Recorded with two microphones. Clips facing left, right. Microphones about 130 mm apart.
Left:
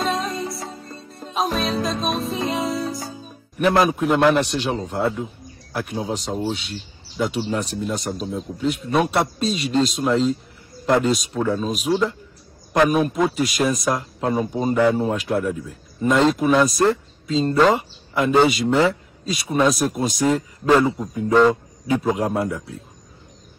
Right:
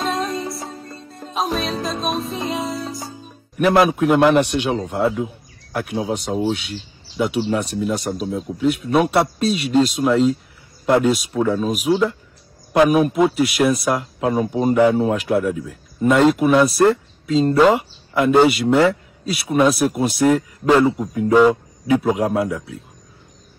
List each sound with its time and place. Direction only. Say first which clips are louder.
0.1 s music: right 2 dB; centre (ahead or behind)
3.7 s a man's voice: right 4 dB; 5° right (ahead or behind)
4.8 s a sound: right 3 dB; 5° right (ahead or behind)
5.9 s a man's voice: right 4 dB; 5° right (ahead or behind)
6.5 s speech: right 4 dB; 70° right (ahead or behind)
7.2 s a man's voice: right 3 dB; 10° right (ahead or behind)